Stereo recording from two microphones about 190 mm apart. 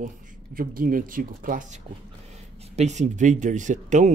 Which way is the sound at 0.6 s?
45° right (ahead or behind).